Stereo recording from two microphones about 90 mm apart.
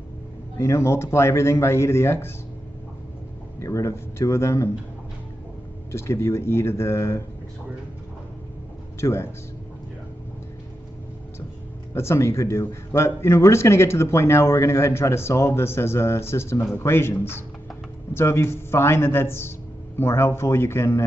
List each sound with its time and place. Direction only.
0.6 s speech: 30° left (ahead or behind)
3.5 s speech: 35° left (ahead or behind)
5.9 s a man's voice: 30° left (ahead or behind)
9.0 s speech: 30° left (ahead or behind)
11.9 s a man's voice: 30° left (ahead or behind)